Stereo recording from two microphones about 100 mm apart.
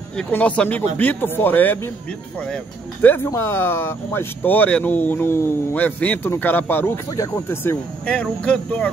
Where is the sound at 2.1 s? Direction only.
10° left (ahead or behind).